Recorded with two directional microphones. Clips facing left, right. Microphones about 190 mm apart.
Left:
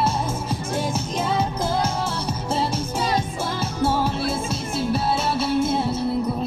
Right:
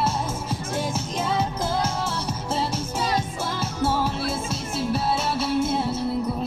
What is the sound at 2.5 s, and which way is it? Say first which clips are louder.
Music: left 2 dB; 30° left (ahead or behind).